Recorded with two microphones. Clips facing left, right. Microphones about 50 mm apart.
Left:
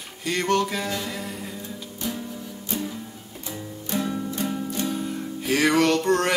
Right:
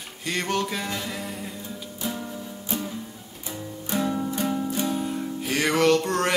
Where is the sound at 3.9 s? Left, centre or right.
Centre.